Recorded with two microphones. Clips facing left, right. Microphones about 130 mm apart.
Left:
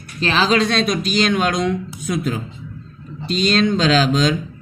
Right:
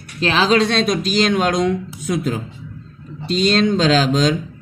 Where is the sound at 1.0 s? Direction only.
55° left (ahead or behind).